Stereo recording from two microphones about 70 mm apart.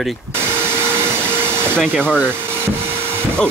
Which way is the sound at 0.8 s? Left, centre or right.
Right.